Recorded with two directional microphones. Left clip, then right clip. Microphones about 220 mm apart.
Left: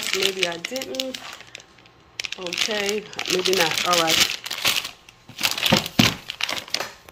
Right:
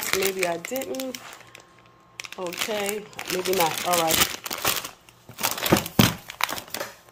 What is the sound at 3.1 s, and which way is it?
Speech, 20° right (ahead or behind).